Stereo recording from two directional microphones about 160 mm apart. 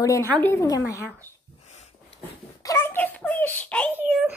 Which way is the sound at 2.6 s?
15° left (ahead or behind).